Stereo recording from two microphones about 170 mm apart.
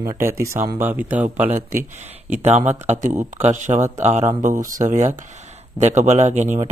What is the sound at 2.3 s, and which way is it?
Speech, 40° right (ahead or behind).